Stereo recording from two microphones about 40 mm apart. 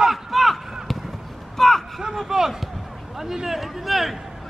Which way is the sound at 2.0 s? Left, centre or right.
Centre.